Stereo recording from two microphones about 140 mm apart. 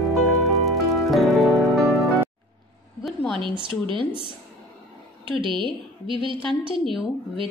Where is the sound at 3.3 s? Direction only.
35° right (ahead or behind).